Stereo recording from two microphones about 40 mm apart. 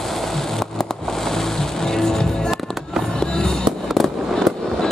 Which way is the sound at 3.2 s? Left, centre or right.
Centre.